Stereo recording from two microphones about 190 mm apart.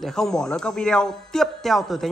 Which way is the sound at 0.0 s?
5° left (ahead or behind).